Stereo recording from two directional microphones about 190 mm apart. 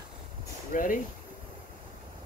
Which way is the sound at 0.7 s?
45° left (ahead or behind).